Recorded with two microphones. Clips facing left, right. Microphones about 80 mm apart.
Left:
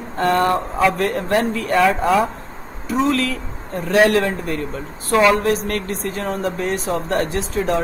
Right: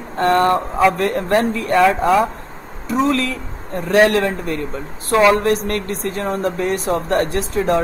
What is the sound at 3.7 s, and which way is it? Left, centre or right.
Speech, centre.